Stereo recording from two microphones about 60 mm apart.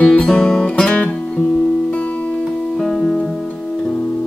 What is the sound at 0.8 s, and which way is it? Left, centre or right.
Music, centre.